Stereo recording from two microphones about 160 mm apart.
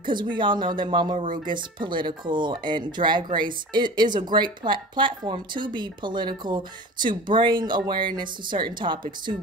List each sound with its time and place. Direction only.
0.1 s speech: 30° right (ahead or behind)